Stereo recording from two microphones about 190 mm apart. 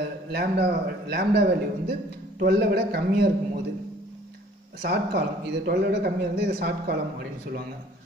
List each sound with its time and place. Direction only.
0.3 s a man's voice: 60° right (ahead or behind)
4.8 s a man's voice: 60° right (ahead or behind)